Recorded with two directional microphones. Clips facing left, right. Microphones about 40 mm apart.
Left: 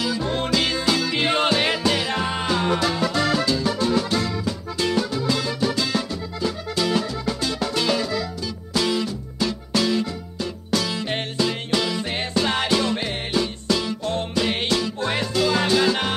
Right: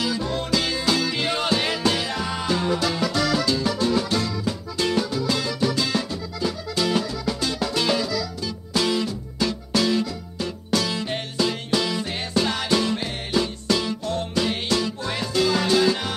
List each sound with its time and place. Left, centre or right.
0.2 s music: left
2.6 s music: left
12.1 s music: left
14.0 s music: left
15.4 s music: left